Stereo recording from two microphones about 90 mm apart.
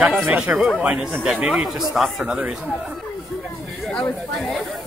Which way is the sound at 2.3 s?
15° right (ahead or behind).